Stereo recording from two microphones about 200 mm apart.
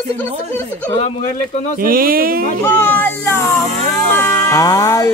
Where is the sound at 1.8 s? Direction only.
45° right (ahead or behind).